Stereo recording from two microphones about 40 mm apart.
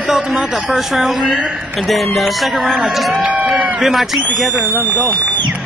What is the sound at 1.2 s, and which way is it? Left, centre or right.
Speech, right.